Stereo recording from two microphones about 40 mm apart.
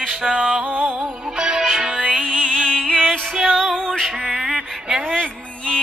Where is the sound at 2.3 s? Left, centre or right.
Left.